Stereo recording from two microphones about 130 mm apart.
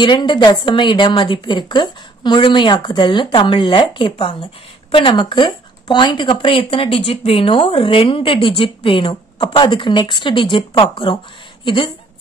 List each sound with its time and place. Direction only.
0.0 s speech: 35° left (ahead or behind)